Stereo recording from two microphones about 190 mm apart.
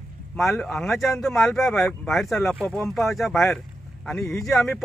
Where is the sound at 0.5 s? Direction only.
5° left (ahead or behind).